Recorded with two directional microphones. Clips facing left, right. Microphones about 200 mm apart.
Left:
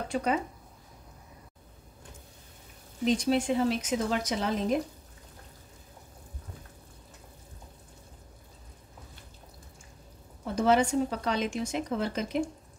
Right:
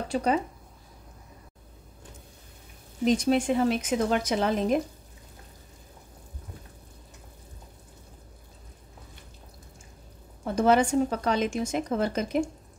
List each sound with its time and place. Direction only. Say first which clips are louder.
0.1 s speech: right 3 dB; 35° right (ahead or behind)
3.1 s speech: right 3 dB; 55° right (ahead or behind)
10.4 s a woman's voice: right 3 dB; 50° right (ahead or behind)